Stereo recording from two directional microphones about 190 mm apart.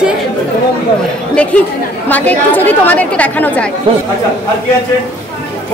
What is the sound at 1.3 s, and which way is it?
Speech, 5° left (ahead or behind).